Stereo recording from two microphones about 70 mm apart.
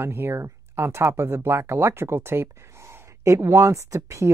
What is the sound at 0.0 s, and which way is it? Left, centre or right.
Speech, right.